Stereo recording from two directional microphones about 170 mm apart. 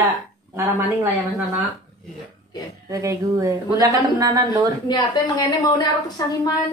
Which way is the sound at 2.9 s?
20° right (ahead or behind).